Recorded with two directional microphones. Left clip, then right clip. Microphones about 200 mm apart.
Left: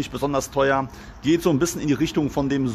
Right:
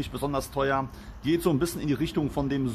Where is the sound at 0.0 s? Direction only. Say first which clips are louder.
Left 6 dB; 10° left (ahead or behind).